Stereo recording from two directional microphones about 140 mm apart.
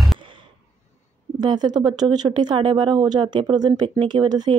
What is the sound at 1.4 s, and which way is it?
Speech, 30° right (ahead or behind).